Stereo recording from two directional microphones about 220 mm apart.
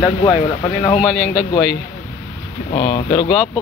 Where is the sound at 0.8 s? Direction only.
20° left (ahead or behind).